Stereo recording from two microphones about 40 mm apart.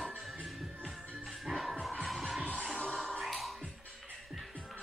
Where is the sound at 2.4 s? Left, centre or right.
Right.